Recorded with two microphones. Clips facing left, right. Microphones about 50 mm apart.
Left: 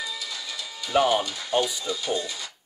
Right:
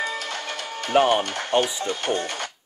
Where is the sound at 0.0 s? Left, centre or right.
Right.